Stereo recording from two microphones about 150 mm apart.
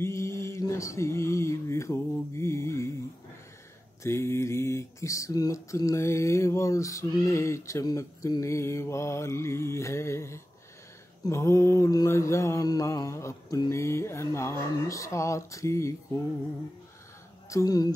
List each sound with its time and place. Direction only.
0.0 s mantra: 20° left (ahead or behind)
4.0 s mantra: 15° left (ahead or behind)
17.5 s mantra: 25° left (ahead or behind)